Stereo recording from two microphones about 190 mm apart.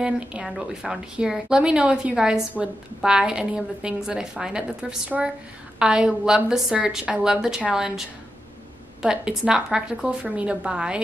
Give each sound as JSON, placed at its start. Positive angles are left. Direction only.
{"t": 0.0, "sound": "a woman's voice", "side_deg": -5}
{"t": 9.0, "sound": "a woman's voice", "side_deg": -5}